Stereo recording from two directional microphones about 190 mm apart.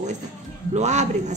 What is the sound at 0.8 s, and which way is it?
Speech, 40° right (ahead or behind).